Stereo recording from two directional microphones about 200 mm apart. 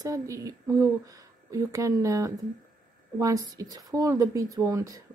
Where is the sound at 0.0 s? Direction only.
20° right (ahead or behind).